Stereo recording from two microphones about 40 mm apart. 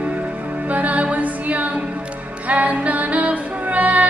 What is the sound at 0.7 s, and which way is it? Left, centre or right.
Music, right.